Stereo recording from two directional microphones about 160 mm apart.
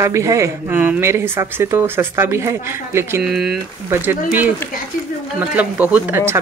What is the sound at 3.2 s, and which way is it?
Speech, centre (ahead or behind).